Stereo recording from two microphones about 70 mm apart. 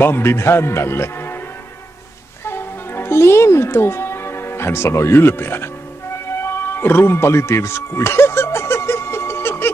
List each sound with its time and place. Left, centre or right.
0.0 s a man's voice: left
2.4 s music: left